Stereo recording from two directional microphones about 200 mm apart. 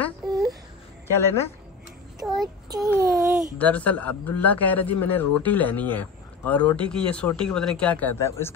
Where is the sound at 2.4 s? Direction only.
20° right (ahead or behind).